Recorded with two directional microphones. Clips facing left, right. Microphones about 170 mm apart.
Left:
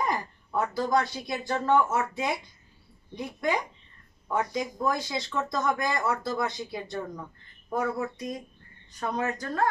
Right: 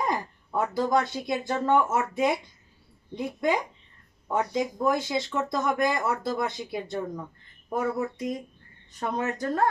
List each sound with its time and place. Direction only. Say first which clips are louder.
0.0 s speech: right 1 dB; 20° right (ahead or behind)